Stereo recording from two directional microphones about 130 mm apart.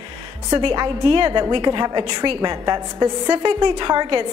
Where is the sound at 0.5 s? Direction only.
35° right (ahead or behind).